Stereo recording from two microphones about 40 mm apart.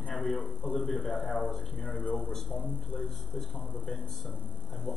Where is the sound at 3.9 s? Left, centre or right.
Centre.